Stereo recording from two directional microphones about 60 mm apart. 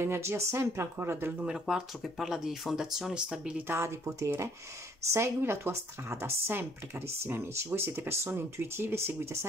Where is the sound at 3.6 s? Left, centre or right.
Right.